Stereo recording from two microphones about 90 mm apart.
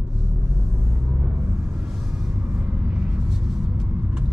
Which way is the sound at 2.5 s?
10° right (ahead or behind).